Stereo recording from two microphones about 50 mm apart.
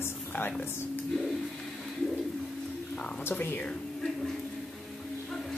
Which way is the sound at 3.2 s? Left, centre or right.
Left.